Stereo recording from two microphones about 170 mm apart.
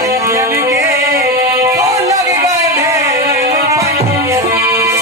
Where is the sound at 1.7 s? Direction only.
20° right (ahead or behind).